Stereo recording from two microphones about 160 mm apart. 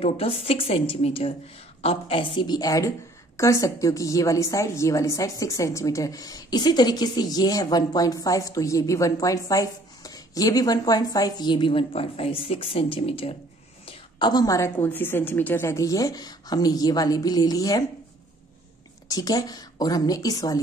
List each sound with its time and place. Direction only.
0.0 s a woman's voice: 40° left (ahead or behind)
19.0 s a woman's voice: 25° left (ahead or behind)